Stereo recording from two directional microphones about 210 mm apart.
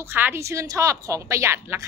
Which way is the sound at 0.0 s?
10° right (ahead or behind).